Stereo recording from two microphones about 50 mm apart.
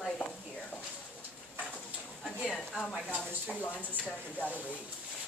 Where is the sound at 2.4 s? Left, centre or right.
Centre.